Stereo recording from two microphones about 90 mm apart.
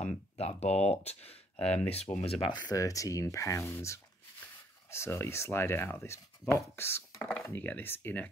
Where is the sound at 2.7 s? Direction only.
40° left (ahead or behind); by 8.3 s 25° left (ahead or behind).